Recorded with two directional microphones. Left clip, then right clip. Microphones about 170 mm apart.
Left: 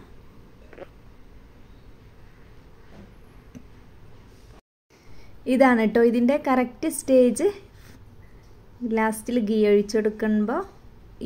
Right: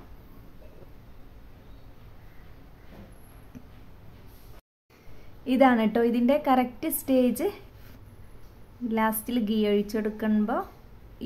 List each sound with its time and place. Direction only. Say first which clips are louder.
5.4 s a woman's voice: left 3 dB; 20° left (ahead or behind)
8.8 s a woman's voice: left 3 dB; 20° left (ahead or behind)